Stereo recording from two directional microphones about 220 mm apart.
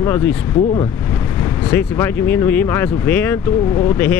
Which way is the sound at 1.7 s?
10° left (ahead or behind).